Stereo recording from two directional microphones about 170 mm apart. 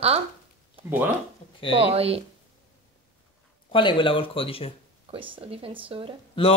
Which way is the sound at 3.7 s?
30° left (ahead or behind).